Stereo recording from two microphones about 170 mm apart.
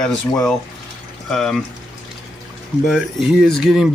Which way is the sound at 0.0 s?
5° left (ahead or behind).